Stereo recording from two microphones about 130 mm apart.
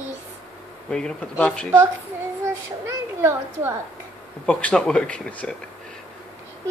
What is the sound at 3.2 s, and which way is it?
Speech, 20° right (ahead or behind).